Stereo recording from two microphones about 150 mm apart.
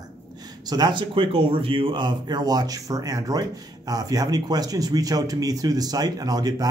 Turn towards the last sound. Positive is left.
turn(degrees=-25)  # may be behind; listen again after turning